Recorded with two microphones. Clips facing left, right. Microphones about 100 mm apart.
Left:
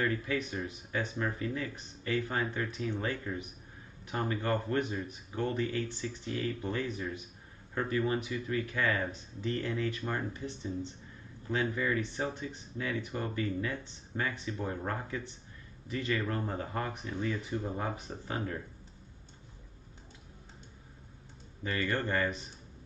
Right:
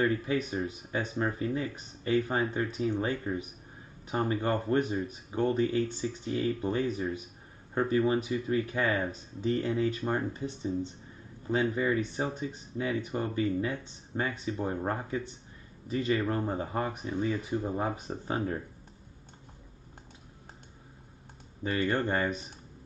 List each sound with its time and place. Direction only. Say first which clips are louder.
0.0 s speech: right 4 dB; 20° right (ahead or behind)
6.6 s speech: right 5 dB; 25° right (ahead or behind)
11.7 s speech: right 4 dB; 20° right (ahead or behind)
21.6 s speech: right 4 dB; 20° right (ahead or behind)